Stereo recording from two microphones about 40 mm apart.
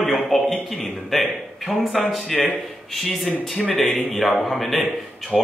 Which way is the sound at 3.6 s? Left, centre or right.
Left.